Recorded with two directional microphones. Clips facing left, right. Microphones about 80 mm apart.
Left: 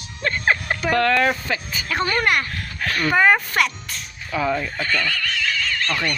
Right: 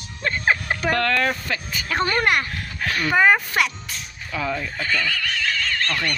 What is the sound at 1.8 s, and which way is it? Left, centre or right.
Speech, right.